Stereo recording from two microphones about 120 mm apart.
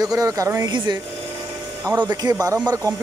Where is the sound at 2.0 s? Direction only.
35° right (ahead or behind).